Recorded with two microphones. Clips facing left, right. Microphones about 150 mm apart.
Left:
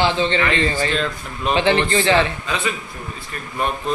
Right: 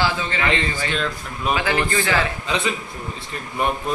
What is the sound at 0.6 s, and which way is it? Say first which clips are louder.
A man's voice: left 4 dB; 35° left (ahead or behind).